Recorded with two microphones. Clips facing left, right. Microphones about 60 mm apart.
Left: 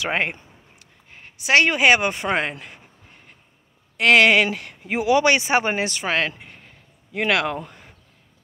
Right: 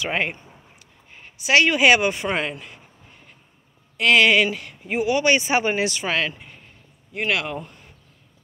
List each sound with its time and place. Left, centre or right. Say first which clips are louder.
0.1 s speech: left 1 dB; left
1.4 s speech: even; left
3.9 s speech: left 1 dB; left
4.8 s speech: left 2 dB; left
5.5 s speech: even; left
7.2 s speech: left 3 dB; left